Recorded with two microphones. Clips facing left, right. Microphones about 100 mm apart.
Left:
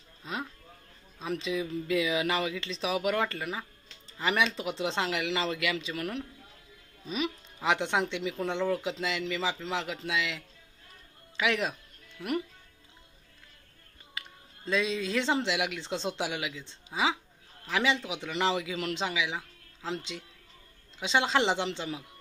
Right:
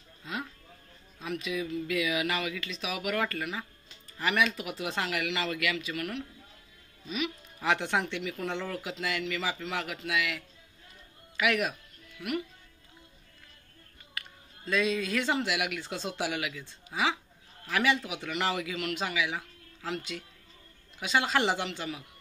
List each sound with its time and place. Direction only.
0.2 s a sound: 25° left (ahead or behind)
1.2 s a man's voice: 25° left (ahead or behind)
7.5 s a man's voice: 20° left (ahead or behind); by 12.4 s 35° left (ahead or behind)
14.1 s a man's voice: 20° left (ahead or behind)